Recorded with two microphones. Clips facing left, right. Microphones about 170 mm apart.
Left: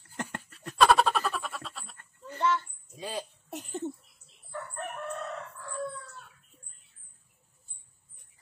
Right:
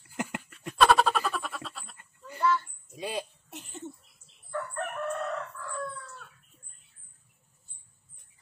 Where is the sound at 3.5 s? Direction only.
40° left (ahead or behind).